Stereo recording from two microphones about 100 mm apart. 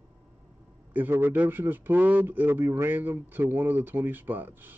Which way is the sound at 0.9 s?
20° right (ahead or behind).